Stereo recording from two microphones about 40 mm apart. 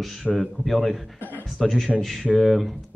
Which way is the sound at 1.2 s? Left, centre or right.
Left.